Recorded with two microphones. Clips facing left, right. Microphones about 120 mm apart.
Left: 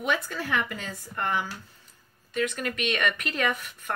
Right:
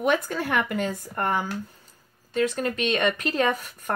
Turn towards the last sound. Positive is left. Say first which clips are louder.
# right 4 dB
turn(degrees=-40)  # may be behind; listen again after turning